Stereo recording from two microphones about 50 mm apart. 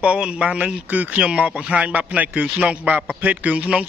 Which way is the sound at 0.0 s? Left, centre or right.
Right.